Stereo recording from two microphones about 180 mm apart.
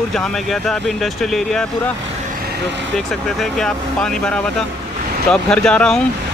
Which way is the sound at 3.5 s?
5° left (ahead or behind).